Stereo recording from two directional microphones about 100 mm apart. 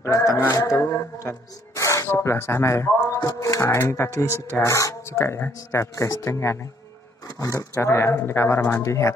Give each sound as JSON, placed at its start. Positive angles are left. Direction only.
{"t": 0.0, "sound": "speech", "side_deg": 30}
{"t": 1.8, "sound": "music", "side_deg": 30}
{"t": 2.0, "sound": "speech", "side_deg": 25}